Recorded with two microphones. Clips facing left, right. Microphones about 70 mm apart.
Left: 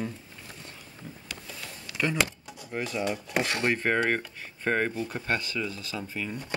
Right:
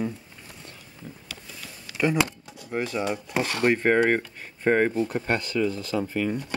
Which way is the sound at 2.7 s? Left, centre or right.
Right.